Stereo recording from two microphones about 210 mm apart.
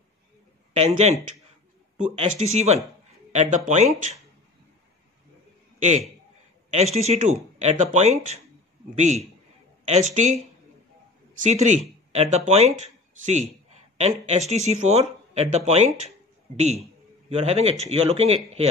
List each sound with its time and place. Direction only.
0.7 s speech: 30° right (ahead or behind)
5.8 s a man's voice: 35° right (ahead or behind)
11.4 s speech: 35° right (ahead or behind)
14.5 s a man's voice: 30° right (ahead or behind)